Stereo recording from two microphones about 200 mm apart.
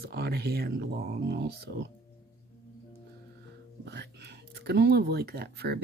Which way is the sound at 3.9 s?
60° right (ahead or behind).